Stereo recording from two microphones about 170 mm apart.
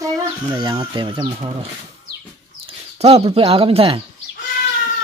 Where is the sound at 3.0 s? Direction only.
35° right (ahead or behind).